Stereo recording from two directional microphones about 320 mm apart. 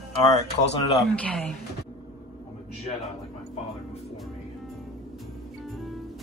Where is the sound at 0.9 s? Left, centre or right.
Centre.